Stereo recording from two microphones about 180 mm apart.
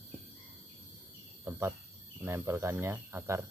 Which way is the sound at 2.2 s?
15° right (ahead or behind).